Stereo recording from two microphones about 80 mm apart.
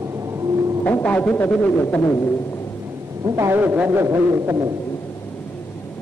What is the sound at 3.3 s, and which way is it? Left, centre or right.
Speech, right.